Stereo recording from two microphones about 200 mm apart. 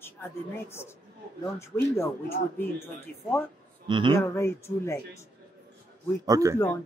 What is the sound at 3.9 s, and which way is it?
Speech, 25° right (ahead or behind).